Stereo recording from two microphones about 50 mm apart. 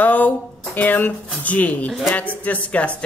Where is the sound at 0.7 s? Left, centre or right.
Left.